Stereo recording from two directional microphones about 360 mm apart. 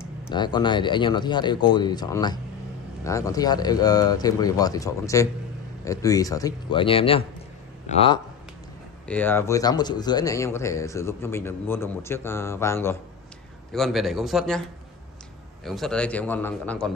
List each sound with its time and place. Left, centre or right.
0.3 s speech: centre
9.0 s a man's voice: centre
15.6 s a man's voice: centre